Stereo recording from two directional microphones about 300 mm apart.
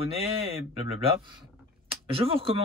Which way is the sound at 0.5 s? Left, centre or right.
Centre.